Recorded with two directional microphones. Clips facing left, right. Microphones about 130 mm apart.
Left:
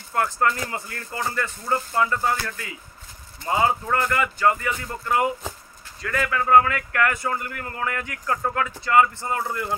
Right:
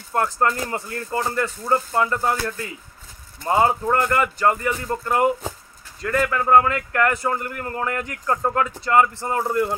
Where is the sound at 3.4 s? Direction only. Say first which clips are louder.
Right 3 dB; 40° right (ahead or behind).